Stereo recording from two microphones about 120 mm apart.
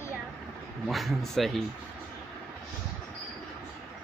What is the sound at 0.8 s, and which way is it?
Speech, centre (ahead or behind).